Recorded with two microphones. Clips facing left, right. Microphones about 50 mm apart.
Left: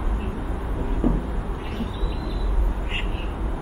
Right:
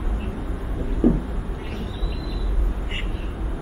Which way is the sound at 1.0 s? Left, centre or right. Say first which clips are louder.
Right 5 dB; left.